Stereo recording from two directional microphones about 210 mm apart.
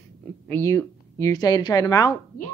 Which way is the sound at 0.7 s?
15° left (ahead or behind).